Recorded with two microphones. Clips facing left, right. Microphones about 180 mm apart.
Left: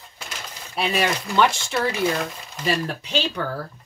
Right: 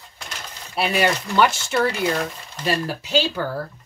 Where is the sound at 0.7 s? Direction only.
5° right (ahead or behind).